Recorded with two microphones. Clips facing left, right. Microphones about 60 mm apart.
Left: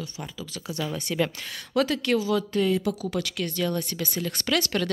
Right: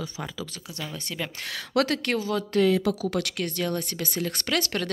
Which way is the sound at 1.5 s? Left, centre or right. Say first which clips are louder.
Even; right.